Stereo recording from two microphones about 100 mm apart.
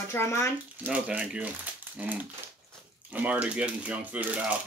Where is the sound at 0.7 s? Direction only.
15° right (ahead or behind).